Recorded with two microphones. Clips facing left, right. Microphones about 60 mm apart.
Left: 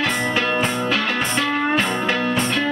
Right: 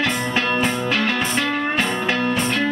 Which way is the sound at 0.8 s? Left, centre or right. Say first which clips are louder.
Even; centre.